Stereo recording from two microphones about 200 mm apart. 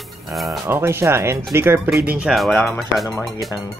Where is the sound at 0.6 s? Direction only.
15° right (ahead or behind).